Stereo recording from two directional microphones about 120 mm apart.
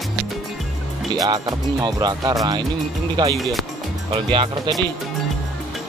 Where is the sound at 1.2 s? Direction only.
30° right (ahead or behind).